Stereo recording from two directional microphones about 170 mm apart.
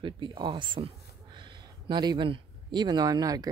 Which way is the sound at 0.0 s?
30° right (ahead or behind).